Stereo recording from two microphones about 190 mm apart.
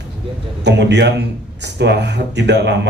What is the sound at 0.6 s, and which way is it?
A man's voice, 65° right (ahead or behind).